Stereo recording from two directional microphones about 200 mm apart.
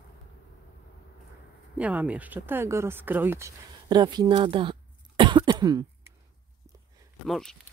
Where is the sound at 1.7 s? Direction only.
5° right (ahead or behind); by 4.7 s 25° right (ahead or behind).